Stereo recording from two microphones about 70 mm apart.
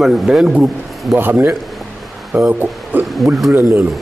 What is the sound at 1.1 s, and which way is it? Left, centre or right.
Speech, right.